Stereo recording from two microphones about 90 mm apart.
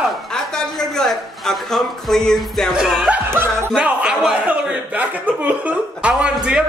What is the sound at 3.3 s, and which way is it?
Speech, 25° right (ahead or behind).